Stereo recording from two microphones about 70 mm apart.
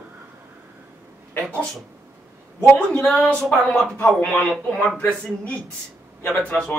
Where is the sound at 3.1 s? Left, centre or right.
Centre.